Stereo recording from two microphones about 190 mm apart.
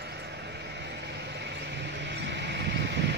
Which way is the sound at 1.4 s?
65° right (ahead or behind).